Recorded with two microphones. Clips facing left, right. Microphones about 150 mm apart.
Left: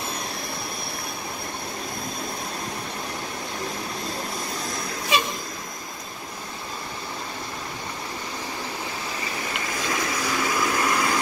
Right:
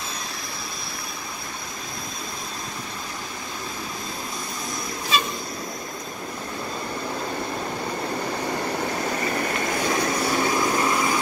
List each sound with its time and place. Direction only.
9.8 s vehicle: 40° right (ahead or behind)
10.6 s vehicle: 20° right (ahead or behind)